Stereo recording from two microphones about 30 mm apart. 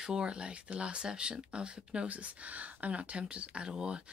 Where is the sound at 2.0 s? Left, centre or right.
Right.